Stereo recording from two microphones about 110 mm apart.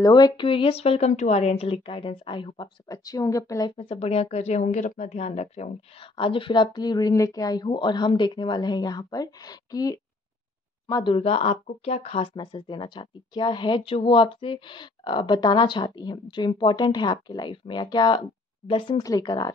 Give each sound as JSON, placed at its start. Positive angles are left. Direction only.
{"t": 0.0, "sound": "a woman's voice", "side_deg": 40}
{"t": 2.9, "sound": "speech", "side_deg": 30}
{"t": 3.7, "sound": "speech", "side_deg": 65}
{"t": 6.1, "sound": "speech", "side_deg": 50}
{"t": 11.1, "sound": "a woman's voice", "side_deg": 60}
{"t": 12.4, "sound": "speech", "side_deg": 45}
{"t": 19.0, "sound": "speech", "side_deg": 35}